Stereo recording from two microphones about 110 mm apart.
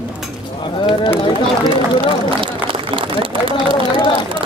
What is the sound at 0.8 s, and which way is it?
Speech, 50° left (ahead or behind).